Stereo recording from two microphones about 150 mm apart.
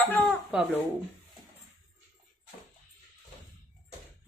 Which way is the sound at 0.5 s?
5° right (ahead or behind).